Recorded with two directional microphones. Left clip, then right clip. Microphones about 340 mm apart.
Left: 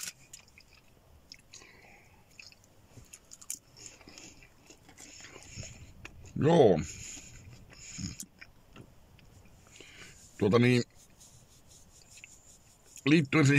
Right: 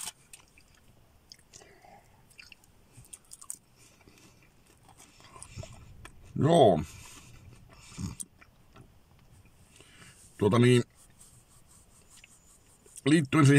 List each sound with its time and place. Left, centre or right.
5.2 s a sound: right
7.7 s dog: right
10.3 s speech: right
13.0 s speech: right